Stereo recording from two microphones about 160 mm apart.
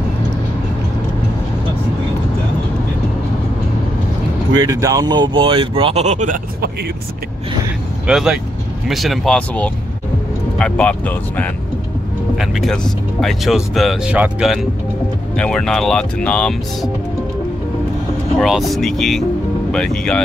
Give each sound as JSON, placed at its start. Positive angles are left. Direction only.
{"t": 4.6, "sound": "speech", "side_deg": -20}
{"t": 8.1, "sound": "speech", "side_deg": -5}
{"t": 18.4, "sound": "speech", "side_deg": 0}